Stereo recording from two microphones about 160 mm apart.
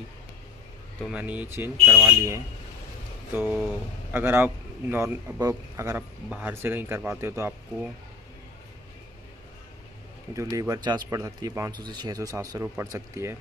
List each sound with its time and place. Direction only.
1.1 s a man's voice: 10° right (ahead or behind)
6.2 s a man's voice: 5° right (ahead or behind)
10.3 s speech: 20° right (ahead or behind)